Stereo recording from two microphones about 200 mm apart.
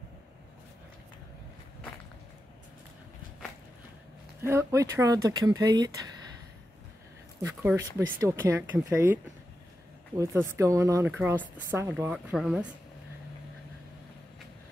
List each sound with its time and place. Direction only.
4.4 s a woman's voice: 15° right (ahead or behind)
7.4 s a woman's voice: 10° right (ahead or behind)